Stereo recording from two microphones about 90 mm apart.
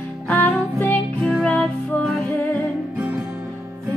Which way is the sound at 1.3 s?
5° left (ahead or behind).